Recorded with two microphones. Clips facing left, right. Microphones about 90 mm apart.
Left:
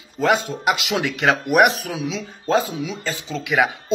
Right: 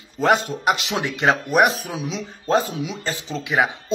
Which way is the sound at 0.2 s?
40° left (ahead or behind).